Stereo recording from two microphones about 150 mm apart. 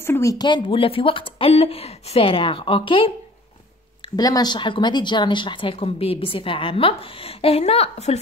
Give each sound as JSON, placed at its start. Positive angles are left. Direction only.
{"t": 0.0, "sound": "speech", "side_deg": 20}
{"t": 4.2, "sound": "speech", "side_deg": 25}